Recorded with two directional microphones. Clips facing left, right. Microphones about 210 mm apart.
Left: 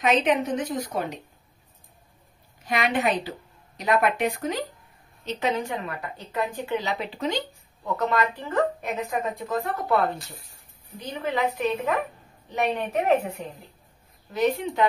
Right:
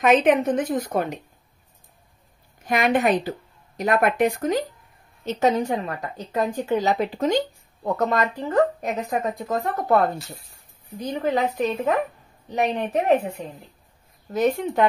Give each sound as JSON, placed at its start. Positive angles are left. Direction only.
{"t": 0.0, "sound": "a woman's voice", "side_deg": -50}
{"t": 2.6, "sound": "a woman's voice", "side_deg": -50}
{"t": 11.1, "sound": "a woman's voice", "side_deg": -40}
{"t": 14.3, "sound": "a woman's voice", "side_deg": -45}